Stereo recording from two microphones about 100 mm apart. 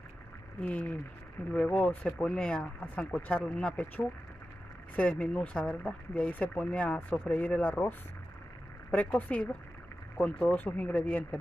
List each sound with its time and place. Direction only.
0.6 s speech: 15° left (ahead or behind)
3.1 s speech: 20° left (ahead or behind)
8.9 s speech: 15° left (ahead or behind)